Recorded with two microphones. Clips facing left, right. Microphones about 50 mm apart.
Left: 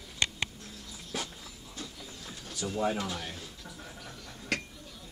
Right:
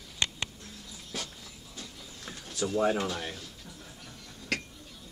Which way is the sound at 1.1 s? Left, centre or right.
Centre.